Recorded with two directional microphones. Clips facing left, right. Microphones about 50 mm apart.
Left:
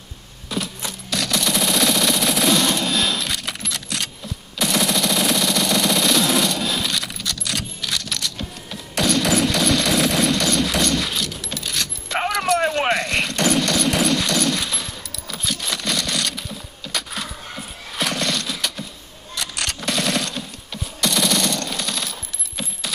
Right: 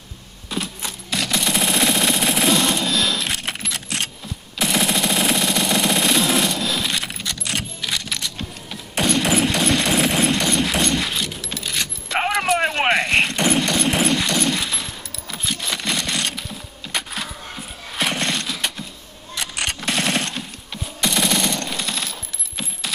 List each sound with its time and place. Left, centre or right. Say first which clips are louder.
0.5 s machine gun: even; right
3.3 s coin: right 1 dB; right
4.6 s machine gun: even; right
6.9 s coin: right 1 dB; right
7.9 s a sound: even; right
19.3 s single-lens reflex camera: right 1 dB; right
19.8 s machine gun: even; right
21.0 s machine gun: even; right
22.6 s coin: right 1 dB; right